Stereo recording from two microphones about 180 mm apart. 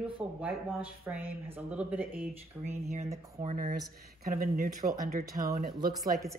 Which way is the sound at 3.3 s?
40° right (ahead or behind).